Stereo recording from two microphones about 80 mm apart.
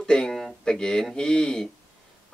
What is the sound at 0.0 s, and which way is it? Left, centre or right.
Speech, centre.